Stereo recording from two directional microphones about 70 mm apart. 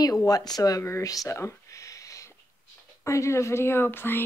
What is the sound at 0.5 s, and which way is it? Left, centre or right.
Speech, left.